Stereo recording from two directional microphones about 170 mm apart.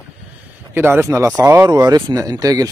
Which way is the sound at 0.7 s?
15° right (ahead or behind).